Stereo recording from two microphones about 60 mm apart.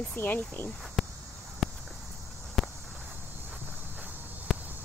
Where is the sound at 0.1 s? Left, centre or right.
Left.